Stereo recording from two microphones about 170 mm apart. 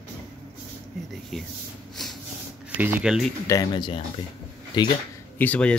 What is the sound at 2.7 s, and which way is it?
Speech, 10° right (ahead or behind).